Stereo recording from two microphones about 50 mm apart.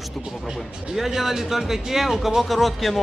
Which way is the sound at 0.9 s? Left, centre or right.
Centre.